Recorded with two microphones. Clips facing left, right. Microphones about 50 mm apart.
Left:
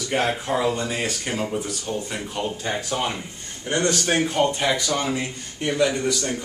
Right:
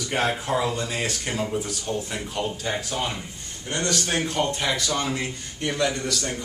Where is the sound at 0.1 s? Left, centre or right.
Centre.